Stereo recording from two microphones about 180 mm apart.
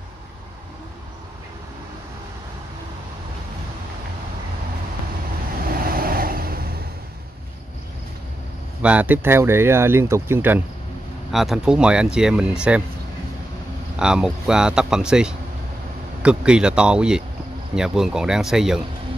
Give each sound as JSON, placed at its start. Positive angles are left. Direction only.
{"t": 5.7, "sound": "vehicle", "side_deg": -55}
{"t": 8.8, "sound": "speech", "side_deg": -10}
{"t": 13.9, "sound": "speech", "side_deg": -5}